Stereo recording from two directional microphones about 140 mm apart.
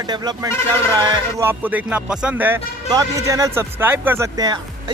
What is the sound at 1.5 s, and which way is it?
Speech, 10° right (ahead or behind).